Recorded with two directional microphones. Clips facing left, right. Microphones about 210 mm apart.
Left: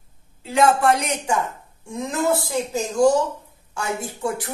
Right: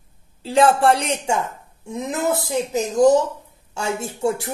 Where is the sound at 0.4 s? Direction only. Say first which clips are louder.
Right 2 dB; 30° right (ahead or behind).